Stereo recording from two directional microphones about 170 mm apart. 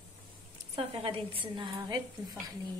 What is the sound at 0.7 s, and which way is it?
A woman's voice, 35° right (ahead or behind).